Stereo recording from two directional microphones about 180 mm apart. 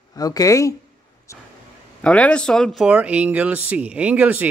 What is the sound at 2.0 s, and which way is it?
Speech, 5° left (ahead or behind).